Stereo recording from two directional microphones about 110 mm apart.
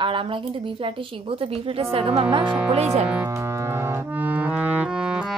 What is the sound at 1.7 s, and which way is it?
Speech, 60° right (ahead or behind).